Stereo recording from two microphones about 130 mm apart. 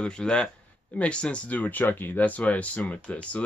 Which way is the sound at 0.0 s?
5° left (ahead or behind).